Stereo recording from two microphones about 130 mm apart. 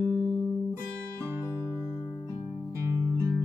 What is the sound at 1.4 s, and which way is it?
Music, 20° left (ahead or behind).